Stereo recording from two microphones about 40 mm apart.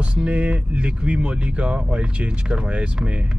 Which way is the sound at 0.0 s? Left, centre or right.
Right.